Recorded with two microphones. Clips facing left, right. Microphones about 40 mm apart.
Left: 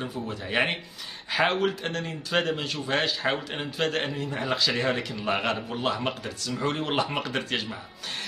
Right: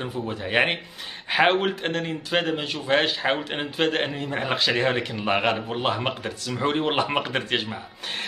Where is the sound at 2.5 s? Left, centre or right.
Right.